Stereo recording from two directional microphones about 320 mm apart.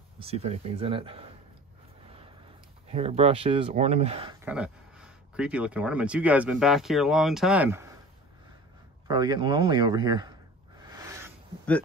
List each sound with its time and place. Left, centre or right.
0.2 s a man's voice: centre
2.9 s speech: centre
9.0 s a man's voice: centre
10.9 s a sound: centre